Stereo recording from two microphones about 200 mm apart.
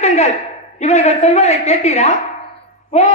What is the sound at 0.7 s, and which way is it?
A man's voice, 35° left (ahead or behind).